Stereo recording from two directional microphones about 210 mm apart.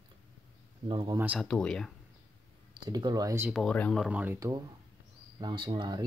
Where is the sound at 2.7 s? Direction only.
20° right (ahead or behind).